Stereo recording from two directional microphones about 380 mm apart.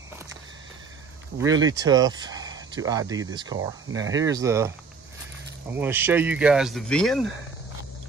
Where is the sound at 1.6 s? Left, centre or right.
Centre.